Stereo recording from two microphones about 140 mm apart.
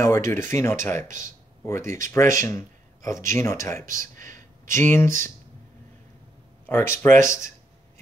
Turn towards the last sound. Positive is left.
turn(degrees=20)  # may be behind; listen again after turning